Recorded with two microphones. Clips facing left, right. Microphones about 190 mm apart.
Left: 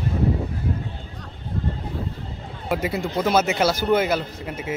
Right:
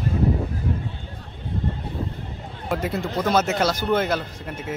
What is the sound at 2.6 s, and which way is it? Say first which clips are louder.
Speech: left 1 dB; 5° left (ahead or behind).